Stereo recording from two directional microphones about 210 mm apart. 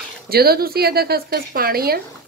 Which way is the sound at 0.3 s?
45° right (ahead or behind).